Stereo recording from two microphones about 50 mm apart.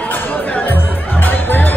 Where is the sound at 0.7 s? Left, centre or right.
Left.